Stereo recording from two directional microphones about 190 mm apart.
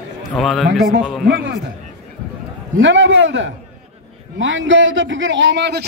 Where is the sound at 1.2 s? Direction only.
60° right (ahead or behind).